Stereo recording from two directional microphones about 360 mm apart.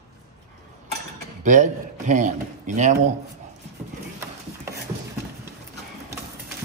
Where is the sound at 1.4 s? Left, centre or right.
Right.